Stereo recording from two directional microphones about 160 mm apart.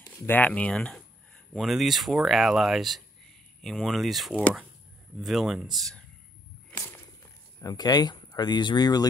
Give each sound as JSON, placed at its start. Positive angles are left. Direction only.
{"t": 0.3, "sound": "speech", "side_deg": 10}
{"t": 7.6, "sound": "speech", "side_deg": 25}